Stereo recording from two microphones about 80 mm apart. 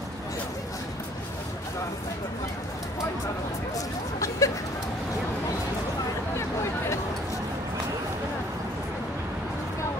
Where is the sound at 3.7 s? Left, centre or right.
Left.